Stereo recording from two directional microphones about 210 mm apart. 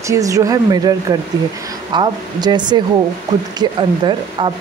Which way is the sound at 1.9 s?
20° right (ahead or behind).